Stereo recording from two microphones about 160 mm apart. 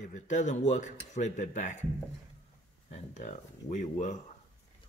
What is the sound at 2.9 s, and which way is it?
Speech, 50° left (ahead or behind).